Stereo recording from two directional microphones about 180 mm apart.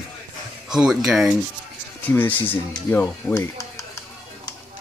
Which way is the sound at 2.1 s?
10° left (ahead or behind).